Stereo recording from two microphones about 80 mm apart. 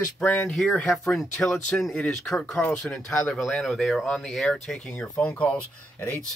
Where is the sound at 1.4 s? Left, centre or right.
Centre.